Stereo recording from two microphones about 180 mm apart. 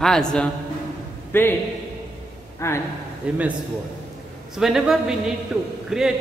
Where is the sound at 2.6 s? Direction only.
15° left (ahead or behind).